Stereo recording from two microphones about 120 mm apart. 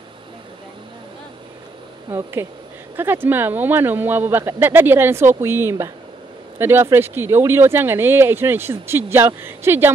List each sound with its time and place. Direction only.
2.0 s speech: 25° right (ahead or behind)